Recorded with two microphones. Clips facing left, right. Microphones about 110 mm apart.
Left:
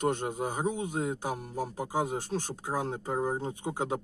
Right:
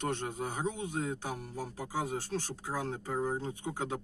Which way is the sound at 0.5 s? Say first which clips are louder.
Left 4 dB; 15° left (ahead or behind).